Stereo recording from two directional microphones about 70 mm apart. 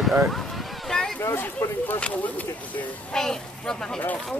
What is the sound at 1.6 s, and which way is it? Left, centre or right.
Speech, left.